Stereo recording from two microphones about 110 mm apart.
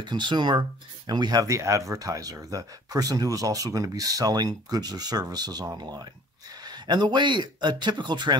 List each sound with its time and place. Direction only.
0.0 s speech: 45° right (ahead or behind)